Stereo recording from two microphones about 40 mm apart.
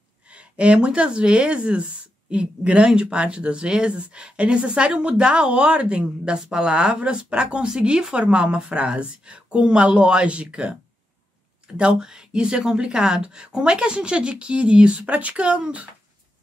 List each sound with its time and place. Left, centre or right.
0.3 s speech: right
11.6 s a sound: right
11.9 s speech: centre